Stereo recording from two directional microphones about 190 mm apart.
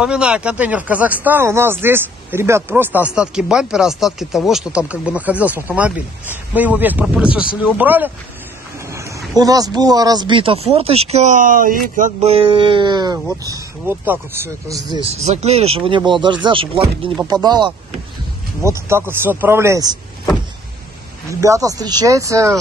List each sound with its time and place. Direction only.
0.0 s speech: 5° right (ahead or behind)
8.8 s a sound: 15° right (ahead or behind)
9.4 s speech: 20° right (ahead or behind)
15.0 s speech: 30° right (ahead or behind); by 19.9 s 15° right (ahead or behind)
21.3 s speech: 15° right (ahead or behind)